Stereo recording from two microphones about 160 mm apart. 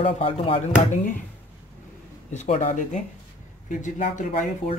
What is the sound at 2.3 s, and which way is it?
Speech, 45° left (ahead or behind).